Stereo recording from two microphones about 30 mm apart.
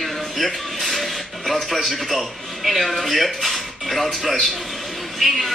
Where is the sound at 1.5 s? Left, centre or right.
Centre.